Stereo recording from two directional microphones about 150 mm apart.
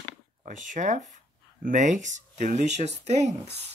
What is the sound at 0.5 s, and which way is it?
Speech, 55° right (ahead or behind).